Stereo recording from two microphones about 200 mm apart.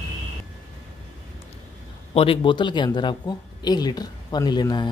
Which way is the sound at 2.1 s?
25° left (ahead or behind).